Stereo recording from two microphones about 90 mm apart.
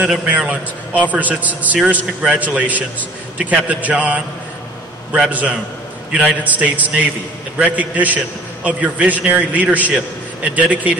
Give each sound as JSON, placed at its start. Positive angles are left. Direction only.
{"t": 0.1, "sound": "a man's voice", "side_deg": -10}